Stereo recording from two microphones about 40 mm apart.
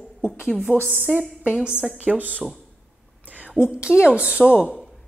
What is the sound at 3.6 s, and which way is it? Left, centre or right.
Speech, right.